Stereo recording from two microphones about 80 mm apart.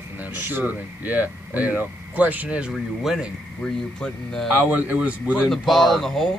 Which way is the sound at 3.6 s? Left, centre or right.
Centre.